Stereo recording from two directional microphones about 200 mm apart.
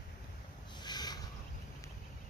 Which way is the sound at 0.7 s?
20° left (ahead or behind).